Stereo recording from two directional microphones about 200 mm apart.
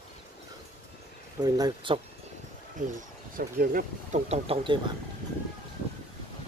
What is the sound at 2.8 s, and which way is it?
Speech, 40° right (ahead or behind).